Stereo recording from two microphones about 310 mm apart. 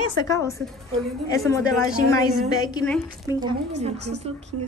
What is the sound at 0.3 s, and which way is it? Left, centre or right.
A woman's voice, centre.